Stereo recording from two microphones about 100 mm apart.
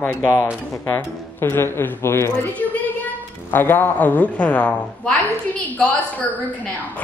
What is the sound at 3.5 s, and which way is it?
A woman's voice, 20° left (ahead or behind).